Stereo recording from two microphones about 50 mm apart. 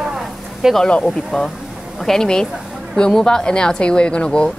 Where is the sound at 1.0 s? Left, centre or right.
Centre.